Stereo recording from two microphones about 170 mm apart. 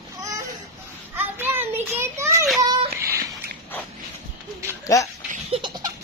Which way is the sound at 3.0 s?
15° right (ahead or behind).